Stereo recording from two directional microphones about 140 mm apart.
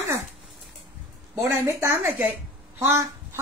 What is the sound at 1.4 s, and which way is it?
A woman's voice, 20° right (ahead or behind).